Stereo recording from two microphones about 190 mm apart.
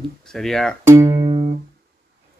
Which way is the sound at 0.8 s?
15° right (ahead or behind).